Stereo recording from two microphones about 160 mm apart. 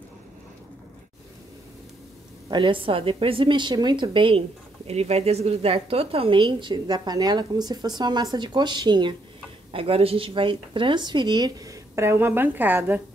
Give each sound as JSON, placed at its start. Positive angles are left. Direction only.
{"t": 2.5, "sound": "a woman's voice", "side_deg": -30}